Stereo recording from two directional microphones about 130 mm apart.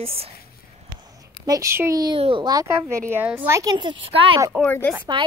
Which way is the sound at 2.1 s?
45° right (ahead or behind).